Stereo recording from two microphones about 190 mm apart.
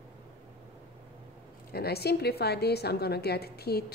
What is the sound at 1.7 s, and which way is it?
A woman's voice, 55° left (ahead or behind).